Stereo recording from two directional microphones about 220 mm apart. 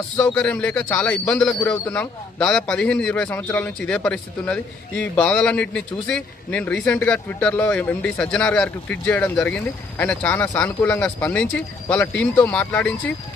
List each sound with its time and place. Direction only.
0.3 s a man's voice: 5° left (ahead or behind)